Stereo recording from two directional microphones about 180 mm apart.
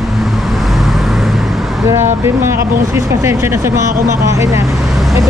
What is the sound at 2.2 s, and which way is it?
Speech, 15° right (ahead or behind).